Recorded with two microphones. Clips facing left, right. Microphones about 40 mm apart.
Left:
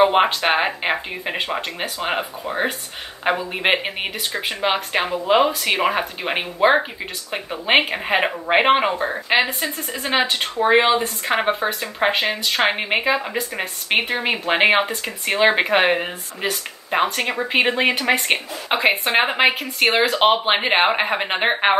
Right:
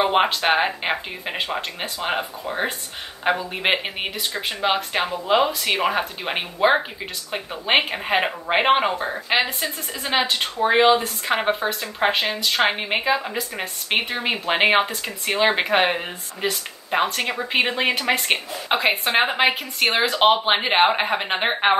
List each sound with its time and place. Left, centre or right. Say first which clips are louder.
0.0 s speech: left 3 dB; centre
4.3 s speech: left 2 dB; left
4.9 s speech: left 5 dB; centre